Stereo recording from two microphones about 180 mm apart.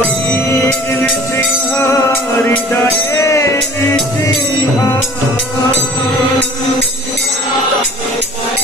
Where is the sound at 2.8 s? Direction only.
20° left (ahead or behind).